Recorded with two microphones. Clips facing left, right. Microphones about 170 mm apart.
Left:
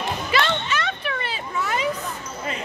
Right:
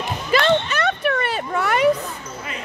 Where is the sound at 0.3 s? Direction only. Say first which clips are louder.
Right 4 dB; 45° right (ahead or behind).